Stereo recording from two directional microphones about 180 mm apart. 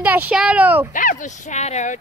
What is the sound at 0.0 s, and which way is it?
Speech, 10° right (ahead or behind).